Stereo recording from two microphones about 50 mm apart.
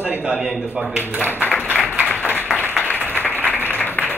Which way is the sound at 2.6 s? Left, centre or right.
Right.